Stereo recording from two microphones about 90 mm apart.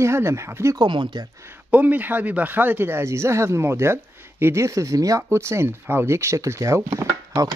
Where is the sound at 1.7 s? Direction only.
20° right (ahead or behind).